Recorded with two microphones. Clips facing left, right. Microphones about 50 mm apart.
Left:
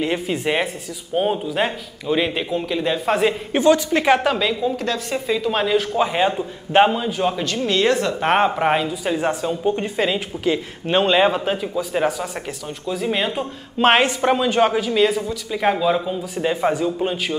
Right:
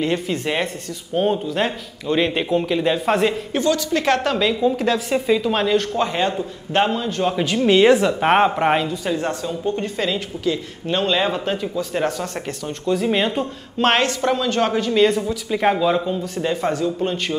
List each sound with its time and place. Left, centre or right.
0.0 s a man's voice: centre
3.5 s speech: left
7.3 s a man's voice: centre
9.0 s a man's voice: centre
11.3 s speech: centre